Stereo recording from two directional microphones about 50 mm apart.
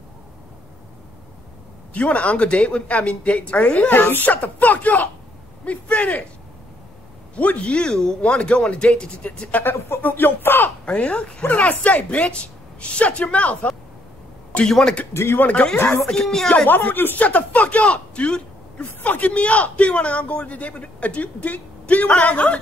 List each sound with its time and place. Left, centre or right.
2.0 s speech: left
7.3 s speech: left
9.5 s speech: left
10.9 s speech: left
11.4 s speech: left
14.7 s speech: centre
15.3 s speech: left
15.7 s speech: left
16.3 s speech: centre
16.6 s speech: left
17.2 s speech: left